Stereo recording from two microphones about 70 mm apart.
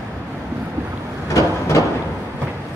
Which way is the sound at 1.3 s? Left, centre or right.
Left.